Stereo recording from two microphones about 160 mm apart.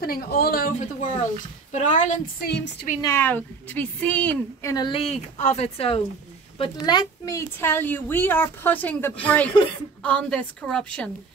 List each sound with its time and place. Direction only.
0.0 s speech: 70° left (ahead or behind)
1.7 s a woman's voice: 50° left (ahead or behind)
2.4 s a woman's voice: 90° left
3.0 s a woman's voice: 15° left (ahead or behind); by 5.9 s 40° left (ahead or behind)
6.6 s a woman's voice: 25° left (ahead or behind); by 11.1 s 5° left (ahead or behind)